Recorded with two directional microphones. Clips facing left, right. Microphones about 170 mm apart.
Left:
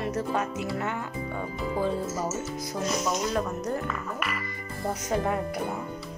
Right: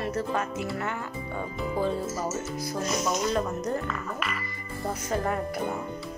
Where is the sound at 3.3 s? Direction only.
Centre (ahead or behind).